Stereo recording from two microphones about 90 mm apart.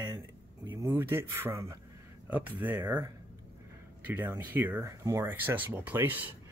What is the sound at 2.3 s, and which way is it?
Speech, 20° right (ahead or behind).